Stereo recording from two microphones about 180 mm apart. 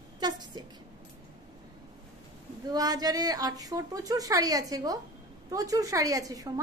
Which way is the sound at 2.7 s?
20° right (ahead or behind).